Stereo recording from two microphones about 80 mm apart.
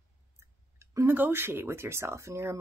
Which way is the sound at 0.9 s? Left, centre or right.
Right.